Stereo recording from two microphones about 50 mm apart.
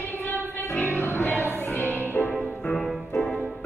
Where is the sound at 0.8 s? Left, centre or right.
Left.